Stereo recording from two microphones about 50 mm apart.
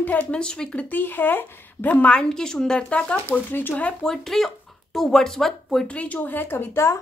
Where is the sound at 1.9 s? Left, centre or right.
Left.